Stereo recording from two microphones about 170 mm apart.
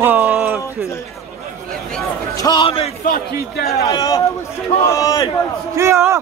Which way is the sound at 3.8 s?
20° left (ahead or behind).